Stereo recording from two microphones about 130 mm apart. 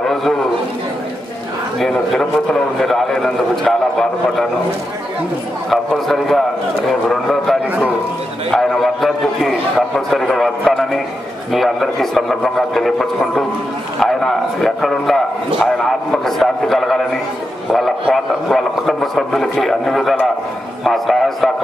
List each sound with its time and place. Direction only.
0.0 s a sound: centre (ahead or behind)
1.8 s a man's voice: 5° left (ahead or behind)
5.7 s a man's voice: centre (ahead or behind)